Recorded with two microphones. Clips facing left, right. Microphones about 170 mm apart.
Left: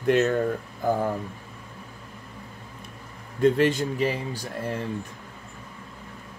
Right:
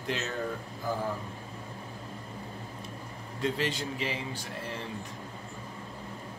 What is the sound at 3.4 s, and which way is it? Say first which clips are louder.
Speech: left 11 dB; 50° left (ahead or behind).